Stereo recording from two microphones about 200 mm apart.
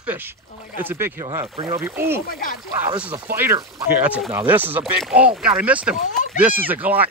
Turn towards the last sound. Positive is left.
turn(degrees=-10)  # may be behind; listen again after turning